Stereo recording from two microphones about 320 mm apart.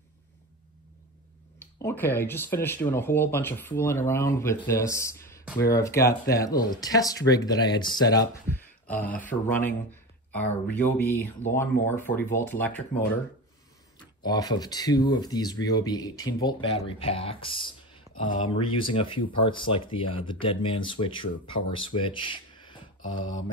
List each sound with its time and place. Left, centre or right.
1.8 s speech: centre
14.2 s speech: centre
21.7 s a sound: centre